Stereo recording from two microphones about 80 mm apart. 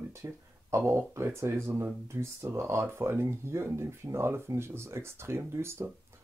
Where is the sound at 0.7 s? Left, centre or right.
Right.